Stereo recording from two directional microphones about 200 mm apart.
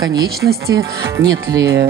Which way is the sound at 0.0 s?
20° right (ahead or behind).